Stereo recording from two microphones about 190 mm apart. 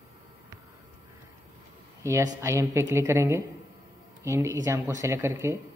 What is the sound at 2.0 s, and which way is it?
Speech, 15° right (ahead or behind).